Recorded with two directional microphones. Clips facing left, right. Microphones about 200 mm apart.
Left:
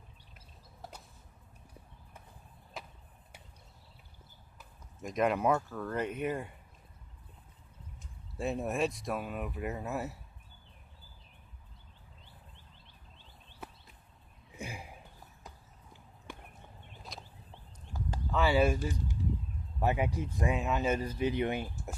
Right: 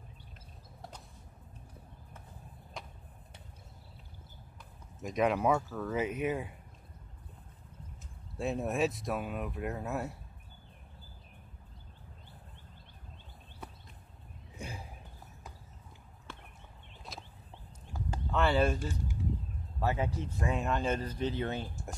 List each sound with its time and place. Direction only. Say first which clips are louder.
2.8 s a sound: even; 5° left (ahead or behind)
5.0 s speech: even; centre (ahead or behind)
8.4 s speech: right 1 dB; centre (ahead or behind)
14.6 s a sound: left 1 dB; 10° left (ahead or behind)
16.3 s horse: left 2 dB; 15° left (ahead or behind)
17.1 s fowl: right 1 dB; centre (ahead or behind)
18.3 s speech: left 1 dB; 5° left (ahead or behind)